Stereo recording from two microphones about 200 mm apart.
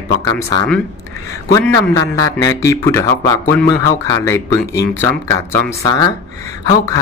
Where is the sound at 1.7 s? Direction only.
15° left (ahead or behind).